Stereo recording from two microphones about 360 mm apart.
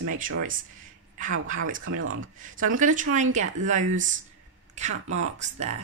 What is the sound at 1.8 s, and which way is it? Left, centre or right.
Speech, right.